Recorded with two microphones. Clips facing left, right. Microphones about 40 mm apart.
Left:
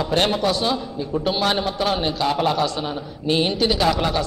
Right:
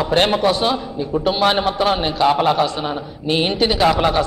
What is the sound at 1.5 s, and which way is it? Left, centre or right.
A man's voice, right.